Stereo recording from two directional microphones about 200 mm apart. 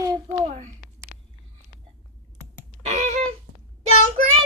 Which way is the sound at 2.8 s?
35° right (ahead or behind).